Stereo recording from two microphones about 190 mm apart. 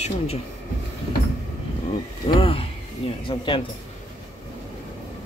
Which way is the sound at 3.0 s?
30° left (ahead or behind).